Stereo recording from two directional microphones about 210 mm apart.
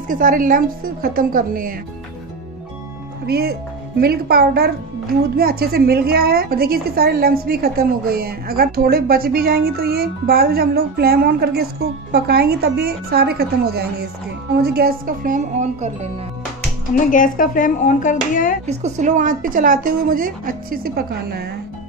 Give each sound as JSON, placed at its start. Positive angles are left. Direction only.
{"t": 0.1, "sound": "a woman's voice", "side_deg": -40}
{"t": 3.3, "sound": "a woman's voice", "side_deg": -50}
{"t": 16.9, "sound": "speech", "side_deg": 40}
{"t": 18.7, "sound": "a woman's voice", "side_deg": -35}